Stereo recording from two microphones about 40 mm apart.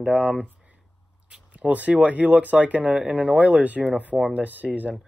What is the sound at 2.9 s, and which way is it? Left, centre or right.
Speech, right.